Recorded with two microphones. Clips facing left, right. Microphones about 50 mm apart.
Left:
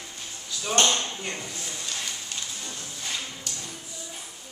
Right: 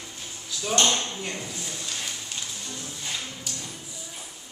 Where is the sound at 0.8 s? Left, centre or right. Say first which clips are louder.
Even; centre.